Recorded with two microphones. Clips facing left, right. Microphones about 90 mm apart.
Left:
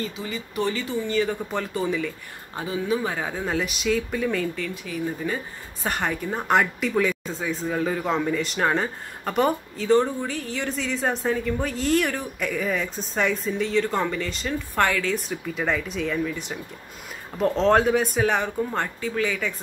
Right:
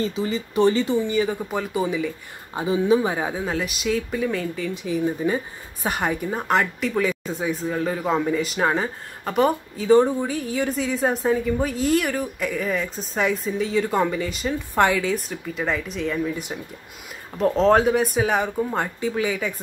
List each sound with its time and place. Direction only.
0.0 s speech: 30° right (ahead or behind)
1.0 s speech: 10° right (ahead or behind)
3.4 s speech: centre (ahead or behind); by 5.4 s 20° right (ahead or behind)
5.9 s speech: 10° right (ahead or behind)
15.1 s speech: centre (ahead or behind)
17.4 s speech: centre (ahead or behind)